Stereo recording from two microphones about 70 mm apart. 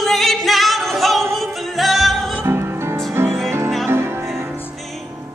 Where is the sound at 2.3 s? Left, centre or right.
Right.